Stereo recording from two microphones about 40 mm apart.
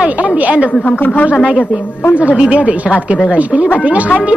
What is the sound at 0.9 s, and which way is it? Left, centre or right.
Speech, left.